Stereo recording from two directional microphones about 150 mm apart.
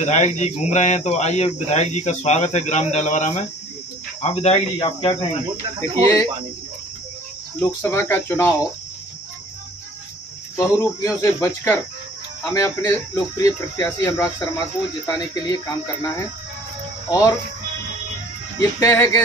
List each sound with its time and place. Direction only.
0.0 s speech: 50° left (ahead or behind)
5.8 s speech: 20° left (ahead or behind)
7.6 s speech: 20° left (ahead or behind)
10.5 s speech: 20° left (ahead or behind)
17.1 s speech: 20° left (ahead or behind)
18.6 s speech: 20° left (ahead or behind)